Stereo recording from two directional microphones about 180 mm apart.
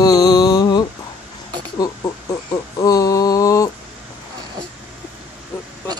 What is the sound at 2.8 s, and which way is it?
Mantra, 20° left (ahead or behind).